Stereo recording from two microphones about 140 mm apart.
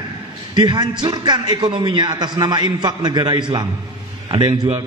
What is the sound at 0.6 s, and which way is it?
A man's voice, 30° right (ahead or behind).